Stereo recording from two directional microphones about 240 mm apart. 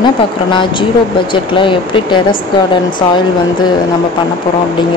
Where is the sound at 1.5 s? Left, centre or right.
Left.